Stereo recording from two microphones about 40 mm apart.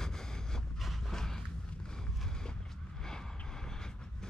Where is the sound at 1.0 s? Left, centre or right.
Centre.